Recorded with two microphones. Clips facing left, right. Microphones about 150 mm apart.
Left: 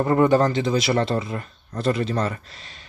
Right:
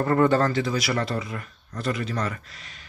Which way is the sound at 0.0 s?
15° left (ahead or behind).